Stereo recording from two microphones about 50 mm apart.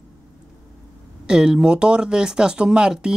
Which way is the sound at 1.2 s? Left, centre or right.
Centre.